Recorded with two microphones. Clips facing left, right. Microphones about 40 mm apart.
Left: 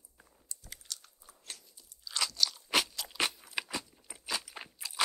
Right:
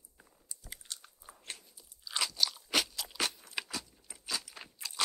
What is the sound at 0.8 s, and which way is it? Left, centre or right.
Biting, right.